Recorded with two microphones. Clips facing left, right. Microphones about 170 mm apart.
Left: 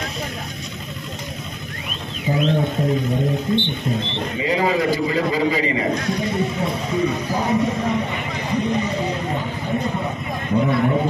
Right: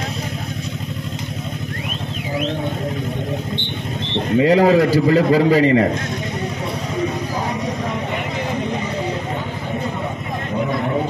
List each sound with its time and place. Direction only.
4.4 s a man's voice: 70° right (ahead or behind)